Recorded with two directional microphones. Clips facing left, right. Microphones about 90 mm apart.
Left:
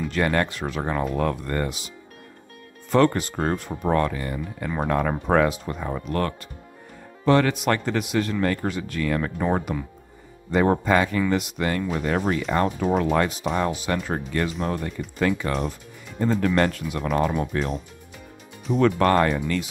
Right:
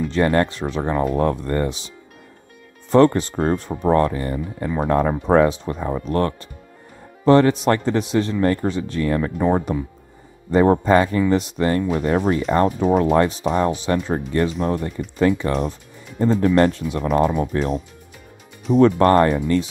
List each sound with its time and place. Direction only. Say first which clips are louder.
0.1 s speech: right 5 dB; 30° right (ahead or behind)
2.9 s speech: right 5 dB; 30° right (ahead or behind)
17.3 s speech: right 4 dB; 20° right (ahead or behind)
18.7 s speech: right 5 dB; 35° right (ahead or behind)